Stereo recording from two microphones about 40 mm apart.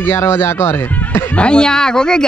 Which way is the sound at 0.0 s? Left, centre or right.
Left.